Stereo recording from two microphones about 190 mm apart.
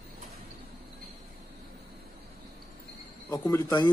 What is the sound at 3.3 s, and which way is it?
Speech, 15° left (ahead or behind).